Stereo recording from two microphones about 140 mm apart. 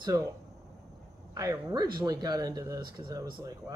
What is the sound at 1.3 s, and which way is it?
Speech, 25° right (ahead or behind).